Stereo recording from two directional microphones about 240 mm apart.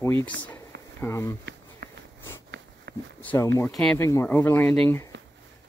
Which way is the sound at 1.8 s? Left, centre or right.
Right.